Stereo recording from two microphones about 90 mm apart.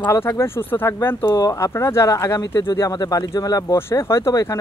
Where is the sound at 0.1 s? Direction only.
30° left (ahead or behind).